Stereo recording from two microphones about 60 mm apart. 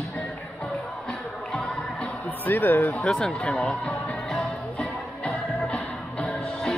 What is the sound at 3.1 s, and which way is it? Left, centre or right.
Music, centre.